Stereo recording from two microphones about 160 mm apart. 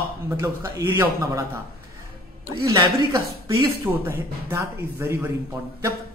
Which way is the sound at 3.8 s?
15° right (ahead or behind).